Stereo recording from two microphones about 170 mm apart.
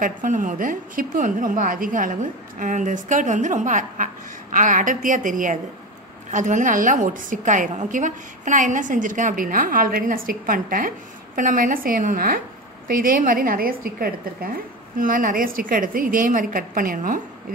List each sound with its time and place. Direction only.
0.0 s a woman's voice: 50° right (ahead or behind)